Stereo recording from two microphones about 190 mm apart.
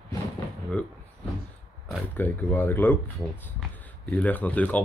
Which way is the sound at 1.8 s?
5° left (ahead or behind).